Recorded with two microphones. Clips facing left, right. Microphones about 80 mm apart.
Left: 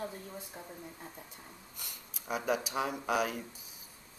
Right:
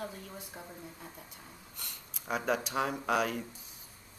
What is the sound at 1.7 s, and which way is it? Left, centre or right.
Speech, centre.